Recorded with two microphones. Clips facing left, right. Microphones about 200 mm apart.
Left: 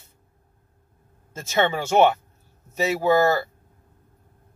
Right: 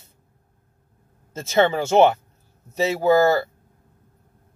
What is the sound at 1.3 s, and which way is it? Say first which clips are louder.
Speech: right 4 dB; 25° right (ahead or behind).